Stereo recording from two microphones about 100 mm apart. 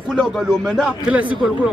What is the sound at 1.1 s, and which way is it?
Speech, 15° right (ahead or behind).